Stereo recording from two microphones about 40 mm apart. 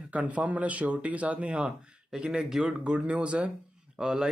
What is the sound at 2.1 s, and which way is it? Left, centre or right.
Speech, centre.